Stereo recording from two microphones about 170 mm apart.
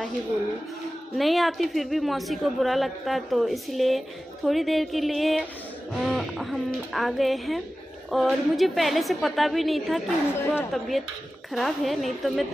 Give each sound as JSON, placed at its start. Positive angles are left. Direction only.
{"t": 1.1, "sound": "a woman's voice", "side_deg": 0}